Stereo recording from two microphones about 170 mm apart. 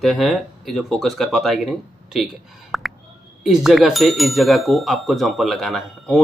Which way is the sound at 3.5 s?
Centre (ahead or behind).